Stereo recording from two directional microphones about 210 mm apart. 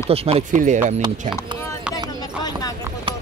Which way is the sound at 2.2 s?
15° left (ahead or behind).